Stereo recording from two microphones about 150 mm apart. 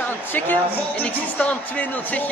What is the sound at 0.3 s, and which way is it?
A woman's voice, 10° left (ahead or behind).